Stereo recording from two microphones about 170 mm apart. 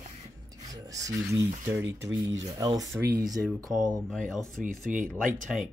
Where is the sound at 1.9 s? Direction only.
90° right.